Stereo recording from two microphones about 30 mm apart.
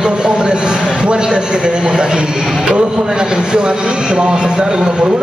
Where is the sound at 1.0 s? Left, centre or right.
Right.